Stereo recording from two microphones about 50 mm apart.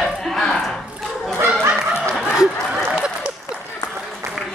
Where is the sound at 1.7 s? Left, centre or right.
Centre.